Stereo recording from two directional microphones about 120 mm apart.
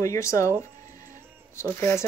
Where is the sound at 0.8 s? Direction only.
90° right.